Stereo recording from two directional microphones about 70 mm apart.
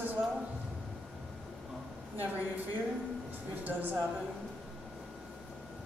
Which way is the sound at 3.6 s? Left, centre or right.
Right.